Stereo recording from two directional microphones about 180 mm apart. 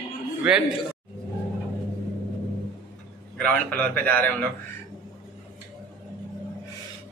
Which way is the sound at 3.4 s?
10° left (ahead or behind).